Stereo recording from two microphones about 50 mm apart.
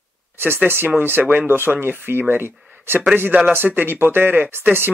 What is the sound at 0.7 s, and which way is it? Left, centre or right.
Speech, right.